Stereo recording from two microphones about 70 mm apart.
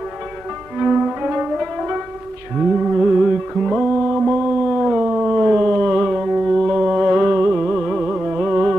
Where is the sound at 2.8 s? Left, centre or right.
Centre.